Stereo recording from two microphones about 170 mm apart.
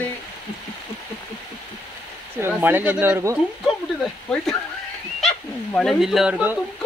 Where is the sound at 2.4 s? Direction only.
10° right (ahead or behind).